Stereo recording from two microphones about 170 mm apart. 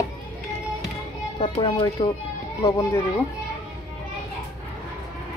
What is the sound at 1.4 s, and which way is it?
Speech, 30° left (ahead or behind).